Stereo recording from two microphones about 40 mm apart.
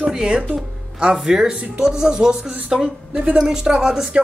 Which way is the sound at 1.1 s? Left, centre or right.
Centre.